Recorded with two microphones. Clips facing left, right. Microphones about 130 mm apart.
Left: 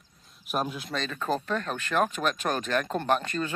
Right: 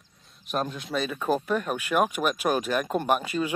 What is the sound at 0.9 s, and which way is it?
Speech, 10° right (ahead or behind).